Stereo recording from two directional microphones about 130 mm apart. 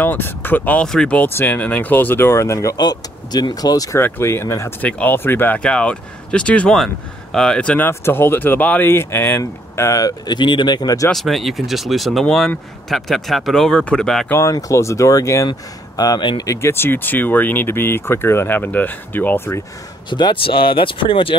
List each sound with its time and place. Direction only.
0.0 s speech: 15° left (ahead or behind); by 11.1 s 30° left (ahead or behind)
11.1 s speech: centre (ahead or behind)
14.3 s speech: 25° left (ahead or behind)
16.4 s speech: 20° left (ahead or behind)
20.1 s speech: 35° left (ahead or behind)